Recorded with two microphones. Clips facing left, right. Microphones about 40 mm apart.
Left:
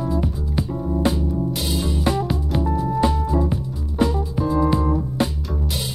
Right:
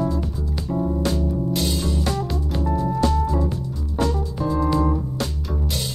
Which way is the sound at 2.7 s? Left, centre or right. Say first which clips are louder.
Left 1 dB; centre.